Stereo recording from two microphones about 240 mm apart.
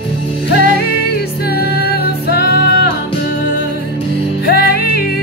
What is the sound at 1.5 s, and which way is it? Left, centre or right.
Music, left.